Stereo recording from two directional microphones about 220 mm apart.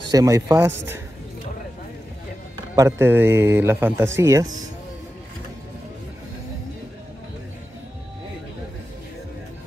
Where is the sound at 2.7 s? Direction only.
10° right (ahead or behind).